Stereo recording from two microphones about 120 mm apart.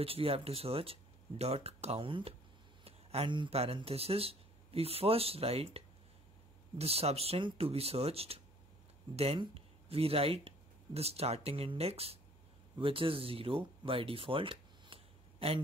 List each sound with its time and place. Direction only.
0.0 s speech: 55° right (ahead or behind)
2.8 s a sound: 55° right (ahead or behind)
3.3 s speech: 40° right (ahead or behind)
3.5 s speech: 55° right (ahead or behind)